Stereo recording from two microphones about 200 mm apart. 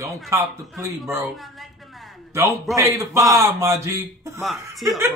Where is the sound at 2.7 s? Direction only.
15° right (ahead or behind).